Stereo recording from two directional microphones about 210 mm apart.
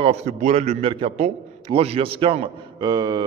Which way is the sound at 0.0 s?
30° right (ahead or behind).